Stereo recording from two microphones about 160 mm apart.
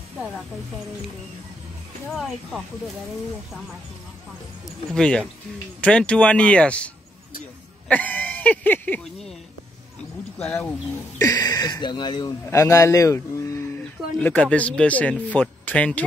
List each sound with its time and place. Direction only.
2.0 s speech: centre (ahead or behind)
4.9 s speech: 5° left (ahead or behind)
7.9 s a sound: 10° left (ahead or behind)
10.4 s speech: 5° left (ahead or behind)
11.1 s speech: 25° left (ahead or behind)